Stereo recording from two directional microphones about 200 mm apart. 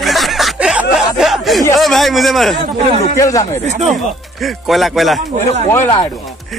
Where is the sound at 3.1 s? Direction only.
15° left (ahead or behind).